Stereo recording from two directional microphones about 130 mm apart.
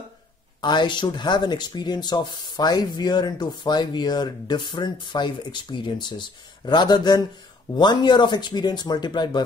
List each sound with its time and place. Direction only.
0.6 s speech: 35° left (ahead or behind)